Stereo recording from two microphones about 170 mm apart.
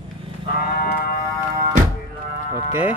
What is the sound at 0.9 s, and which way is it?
Music, 65° left (ahead or behind).